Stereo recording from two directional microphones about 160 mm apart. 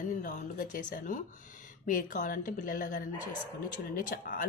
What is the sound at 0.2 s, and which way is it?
Speech, 55° left (ahead or behind).